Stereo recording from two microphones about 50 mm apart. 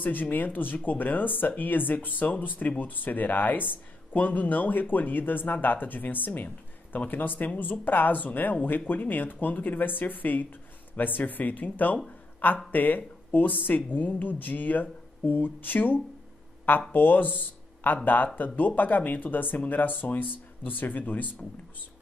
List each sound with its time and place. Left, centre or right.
0.0 s speech: left